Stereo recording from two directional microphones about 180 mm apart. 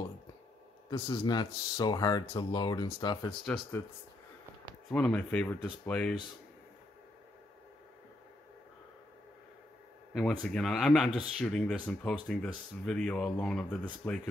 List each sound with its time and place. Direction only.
0.8 s speech: 25° left (ahead or behind)
3.4 s speech: 5° left (ahead or behind)
4.9 s speech: 5° left (ahead or behind)
10.5 s speech: centre (ahead or behind)